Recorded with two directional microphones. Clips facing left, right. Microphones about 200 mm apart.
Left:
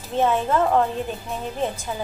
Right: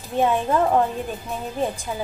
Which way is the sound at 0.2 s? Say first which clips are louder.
Even; 15° right (ahead or behind).